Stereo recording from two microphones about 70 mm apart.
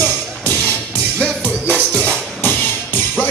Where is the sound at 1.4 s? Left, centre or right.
Left.